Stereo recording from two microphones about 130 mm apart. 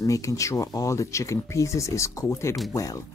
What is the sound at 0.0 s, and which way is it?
Speech, 25° left (ahead or behind).